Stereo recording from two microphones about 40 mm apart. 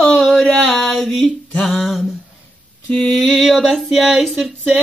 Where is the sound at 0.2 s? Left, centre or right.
Centre.